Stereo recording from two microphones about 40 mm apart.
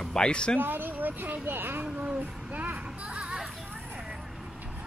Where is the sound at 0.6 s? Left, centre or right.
Right.